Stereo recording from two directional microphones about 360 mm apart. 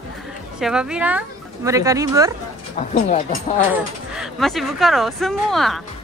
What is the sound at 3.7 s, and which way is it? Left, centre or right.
Speech, centre.